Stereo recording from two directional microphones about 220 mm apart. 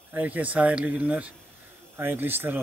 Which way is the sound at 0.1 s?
5° right (ahead or behind).